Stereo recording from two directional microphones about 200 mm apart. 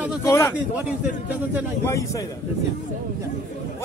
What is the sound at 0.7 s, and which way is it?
Speech, 5° right (ahead or behind).